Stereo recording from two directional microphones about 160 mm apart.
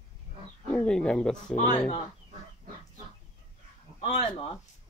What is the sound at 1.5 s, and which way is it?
Speech, 50° left (ahead or behind).